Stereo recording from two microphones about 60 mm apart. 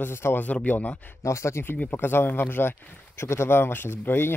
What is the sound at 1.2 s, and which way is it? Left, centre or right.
Speech, left.